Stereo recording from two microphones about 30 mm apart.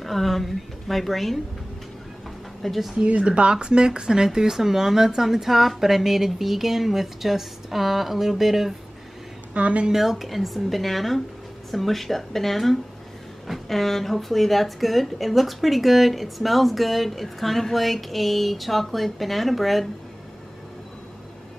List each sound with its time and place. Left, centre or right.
0.0 s a woman's voice: centre
2.6 s speech: centre
3.2 s speech: right; by 8.7 s centre
9.5 s a woman's voice: right
9.9 s speech: centre